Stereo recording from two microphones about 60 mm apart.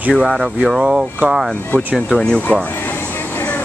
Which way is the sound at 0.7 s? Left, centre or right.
Centre.